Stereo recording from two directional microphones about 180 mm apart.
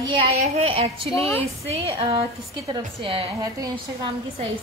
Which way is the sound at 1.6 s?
35° right (ahead or behind).